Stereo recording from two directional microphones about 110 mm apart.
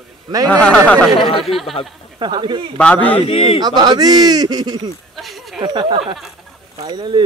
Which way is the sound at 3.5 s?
40° right (ahead or behind).